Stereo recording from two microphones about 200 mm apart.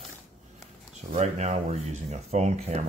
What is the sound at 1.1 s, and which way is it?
Speech, 35° right (ahead or behind).